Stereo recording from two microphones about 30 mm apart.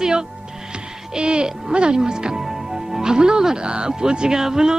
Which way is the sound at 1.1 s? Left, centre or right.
Right.